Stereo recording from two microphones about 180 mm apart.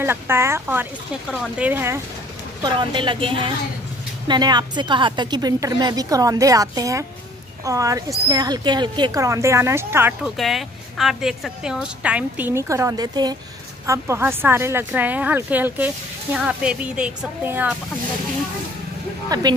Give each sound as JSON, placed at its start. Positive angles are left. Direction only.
{"t": 0.0, "sound": "a woman's voice", "side_deg": -15}
{"t": 2.6, "sound": "a woman's voice", "side_deg": -25}
{"t": 10.3, "sound": "a woman's voice", "side_deg": 0}
{"t": 19.2, "sound": "speech", "side_deg": -20}